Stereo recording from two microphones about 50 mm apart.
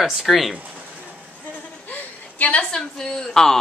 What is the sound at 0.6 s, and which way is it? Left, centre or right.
Pigeon, right.